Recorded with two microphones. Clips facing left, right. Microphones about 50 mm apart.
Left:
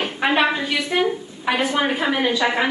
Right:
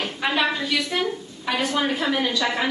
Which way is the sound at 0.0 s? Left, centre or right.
Left.